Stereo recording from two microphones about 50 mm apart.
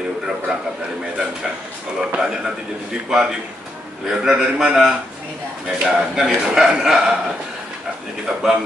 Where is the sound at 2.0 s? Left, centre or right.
Right.